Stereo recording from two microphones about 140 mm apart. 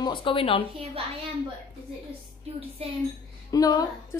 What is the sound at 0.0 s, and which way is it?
Speech, 35° left (ahead or behind).